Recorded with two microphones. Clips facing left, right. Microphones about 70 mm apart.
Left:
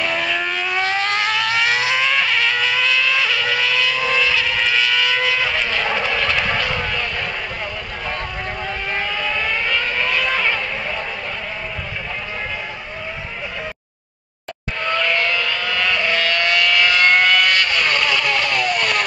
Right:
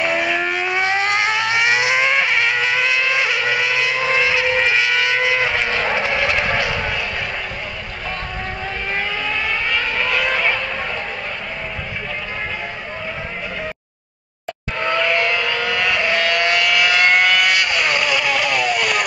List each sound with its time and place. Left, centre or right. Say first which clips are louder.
0.0 s vehicle: right 2 dB; centre
6.6 s a sound: right 1 dB; centre
8.9 s vehicle: even; centre
14.8 s vehicle: right 2 dB; right